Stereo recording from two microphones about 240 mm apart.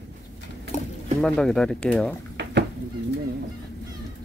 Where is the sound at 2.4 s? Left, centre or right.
Right.